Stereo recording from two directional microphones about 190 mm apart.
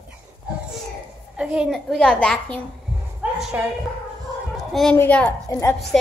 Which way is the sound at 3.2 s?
10° right (ahead or behind).